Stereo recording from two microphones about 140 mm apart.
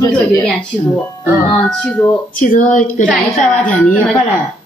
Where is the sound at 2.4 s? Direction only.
65° left (ahead or behind).